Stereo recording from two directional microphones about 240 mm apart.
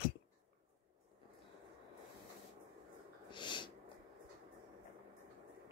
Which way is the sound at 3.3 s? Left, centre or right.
Centre.